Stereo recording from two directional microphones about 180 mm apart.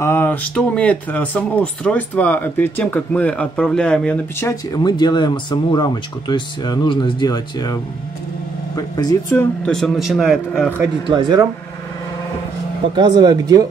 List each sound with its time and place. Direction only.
0.0 s speech: 15° left (ahead or behind)
9.7 s a man's voice: centre (ahead or behind)
11.1 s speech: 25° right (ahead or behind)
12.9 s speech: 25° right (ahead or behind)